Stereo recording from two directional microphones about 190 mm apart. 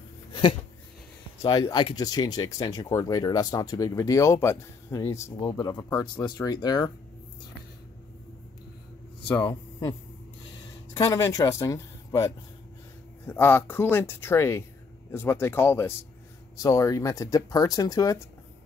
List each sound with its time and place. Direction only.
0.3 s a sound: 25° left (ahead or behind)
1.4 s speech: 20° left (ahead or behind)
9.4 s speech: 20° left (ahead or behind)
11.0 s speech: 15° left (ahead or behind)
13.3 s speech: 10° left (ahead or behind)